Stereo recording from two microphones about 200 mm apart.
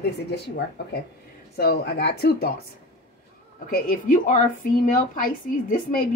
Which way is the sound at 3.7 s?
40° left (ahead or behind).